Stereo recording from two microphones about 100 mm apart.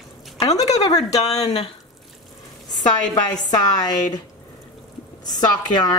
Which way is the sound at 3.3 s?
40° left (ahead or behind).